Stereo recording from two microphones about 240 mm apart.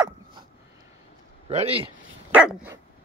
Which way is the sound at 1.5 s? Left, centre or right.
Right.